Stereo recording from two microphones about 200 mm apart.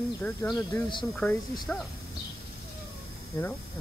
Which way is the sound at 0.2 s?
5° left (ahead or behind).